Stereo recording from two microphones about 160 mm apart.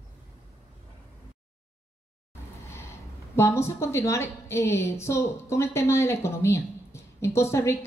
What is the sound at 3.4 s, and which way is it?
A woman's voice, 15° left (ahead or behind).